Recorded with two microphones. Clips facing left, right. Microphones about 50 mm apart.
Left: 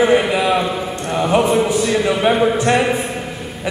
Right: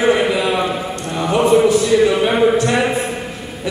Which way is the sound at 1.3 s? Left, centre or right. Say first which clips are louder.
Right 4 dB; left.